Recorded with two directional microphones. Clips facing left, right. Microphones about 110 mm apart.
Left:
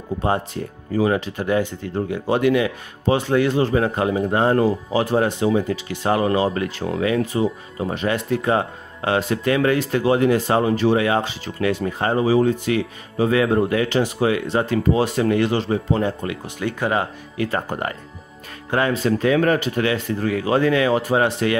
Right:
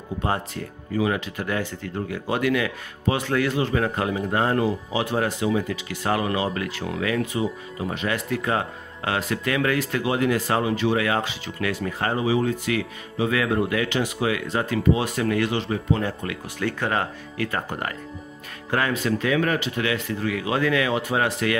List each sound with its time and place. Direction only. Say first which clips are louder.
0.2 s speech: left 4 dB; 30° left (ahead or behind)
4.6 s speech: left 5 dB; 40° left (ahead or behind)
10.6 s speech: left 5 dB; 40° left (ahead or behind); by 17.5 s 15° left (ahead or behind)
17.5 s speech: left 4 dB; 30° left (ahead or behind)